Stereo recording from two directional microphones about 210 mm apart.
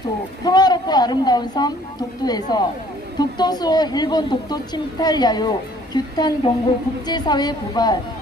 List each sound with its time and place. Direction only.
0.5 s a woman's voice: 20° left (ahead or behind)